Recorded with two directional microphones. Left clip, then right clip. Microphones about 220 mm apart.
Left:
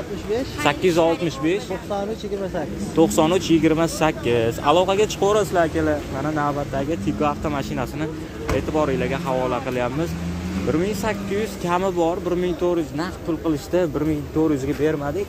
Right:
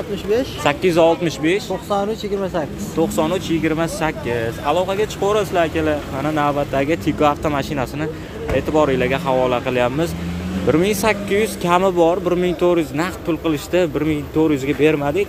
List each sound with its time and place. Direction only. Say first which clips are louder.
0.3 s speech: right 6 dB; 45° right (ahead or behind)
0.7 s speech: right 3 dB; 5° right (ahead or behind)
3.0 s speech: left 1 dB; 15° left (ahead or behind)
5.2 s speech: right 4 dB; 5° left (ahead or behind); by 6.5 s 10° right (ahead or behind)
6.7 s speech: right 6 dB; 20° right (ahead or behind)